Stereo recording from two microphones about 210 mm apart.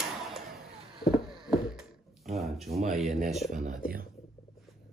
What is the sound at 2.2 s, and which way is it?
Speech, centre (ahead or behind).